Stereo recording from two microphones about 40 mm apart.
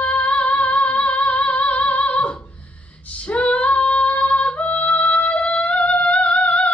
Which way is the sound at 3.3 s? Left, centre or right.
Left.